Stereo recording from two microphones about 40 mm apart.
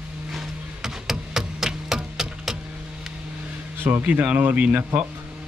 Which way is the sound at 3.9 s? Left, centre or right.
Right.